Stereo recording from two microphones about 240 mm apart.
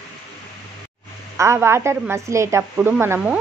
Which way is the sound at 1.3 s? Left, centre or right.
Centre.